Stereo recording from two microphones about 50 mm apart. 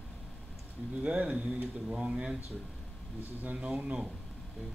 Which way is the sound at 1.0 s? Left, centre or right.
Right.